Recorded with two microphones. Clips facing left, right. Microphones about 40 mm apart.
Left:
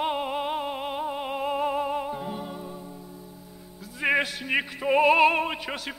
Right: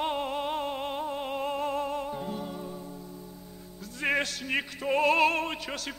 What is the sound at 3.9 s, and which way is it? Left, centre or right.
Music, centre.